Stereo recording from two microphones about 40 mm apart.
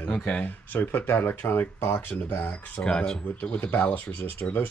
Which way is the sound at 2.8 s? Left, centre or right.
Centre.